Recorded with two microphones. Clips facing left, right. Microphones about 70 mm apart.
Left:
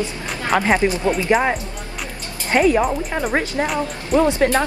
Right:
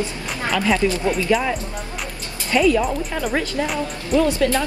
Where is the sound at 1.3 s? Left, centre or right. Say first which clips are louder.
Left 2 dB; left.